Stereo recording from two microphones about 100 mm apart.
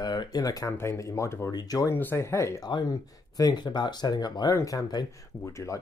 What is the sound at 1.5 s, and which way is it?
Speech, 40° left (ahead or behind).